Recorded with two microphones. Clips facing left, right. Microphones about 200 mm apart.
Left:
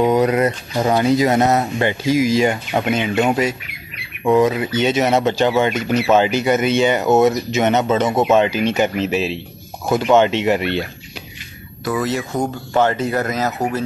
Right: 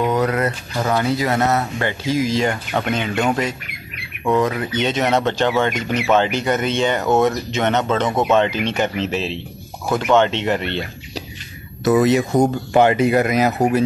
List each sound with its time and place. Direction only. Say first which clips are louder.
0.0 s speech: left 4 dB; 15° left (ahead or behind)
4.6 s speech: left 3 dB; 5° left (ahead or behind)
11.8 s speech: right 6 dB; 20° right (ahead or behind)